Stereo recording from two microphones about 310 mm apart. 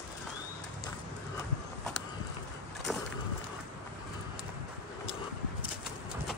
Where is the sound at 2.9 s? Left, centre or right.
Centre.